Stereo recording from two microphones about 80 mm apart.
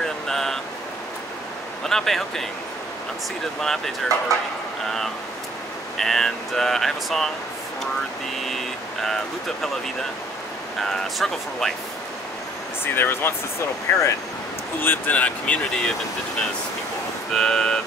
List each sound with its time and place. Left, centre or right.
0.0 s a sound: centre
1.9 s speech: centre
3.6 s speech: centre
4.8 s a sound: centre
5.9 s speech: centre
8.5 s speech: centre
10.8 s speech: centre
12.8 s speech: left; by 15.9 s centre
17.3 s speech: centre